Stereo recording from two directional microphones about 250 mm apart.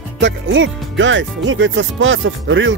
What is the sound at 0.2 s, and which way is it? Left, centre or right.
Speech, right.